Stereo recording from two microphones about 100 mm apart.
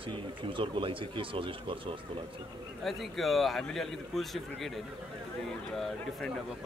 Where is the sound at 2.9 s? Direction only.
Centre (ahead or behind).